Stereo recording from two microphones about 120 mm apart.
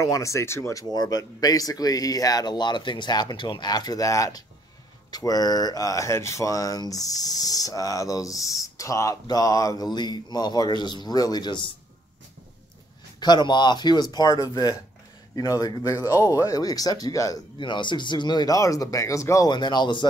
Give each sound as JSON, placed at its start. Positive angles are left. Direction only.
{"t": 0.0, "sound": "speech", "side_deg": 25}
{"t": 13.2, "sound": "speech", "side_deg": 35}
{"t": 17.6, "sound": "speech", "side_deg": 40}
{"t": 19.5, "sound": "speech", "side_deg": 40}